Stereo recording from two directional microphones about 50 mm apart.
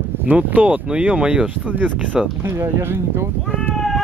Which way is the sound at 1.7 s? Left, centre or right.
Right.